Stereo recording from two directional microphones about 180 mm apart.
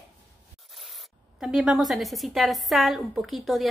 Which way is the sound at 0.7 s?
Centre (ahead or behind).